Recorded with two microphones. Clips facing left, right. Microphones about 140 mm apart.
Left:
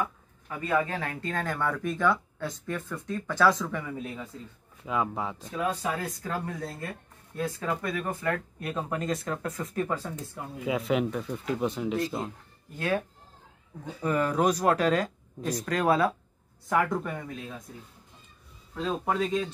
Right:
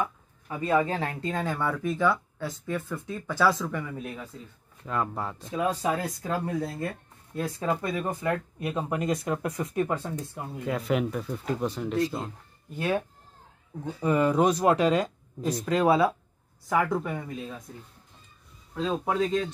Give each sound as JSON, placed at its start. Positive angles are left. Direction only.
{"t": 0.5, "sound": "speech", "side_deg": -20}
{"t": 1.3, "sound": "speech", "side_deg": -10}
{"t": 5.6, "sound": "speech", "side_deg": -20}
{"t": 7.5, "sound": "speech", "side_deg": -25}
{"t": 8.3, "sound": "speech", "side_deg": -10}
{"t": 10.6, "sound": "speech", "side_deg": 0}
{"t": 12.7, "sound": "speech", "side_deg": -10}
{"t": 14.0, "sound": "speech", "side_deg": -10}
{"t": 18.8, "sound": "speech", "side_deg": -5}